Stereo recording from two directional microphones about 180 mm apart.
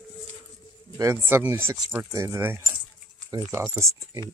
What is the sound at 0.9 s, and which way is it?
Speech, 15° right (ahead or behind).